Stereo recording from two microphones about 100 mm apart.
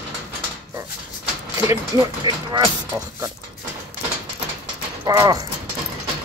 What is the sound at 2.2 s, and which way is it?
Speech, 50° right (ahead or behind).